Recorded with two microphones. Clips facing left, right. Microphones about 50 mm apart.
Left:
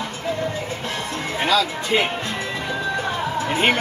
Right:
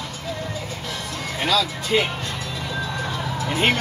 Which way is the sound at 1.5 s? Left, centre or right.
Centre.